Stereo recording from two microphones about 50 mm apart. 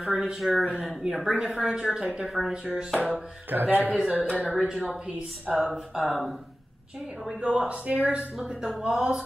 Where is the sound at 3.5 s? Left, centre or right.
Right.